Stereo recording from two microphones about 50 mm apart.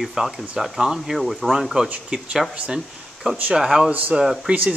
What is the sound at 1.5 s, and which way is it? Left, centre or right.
Speech, centre.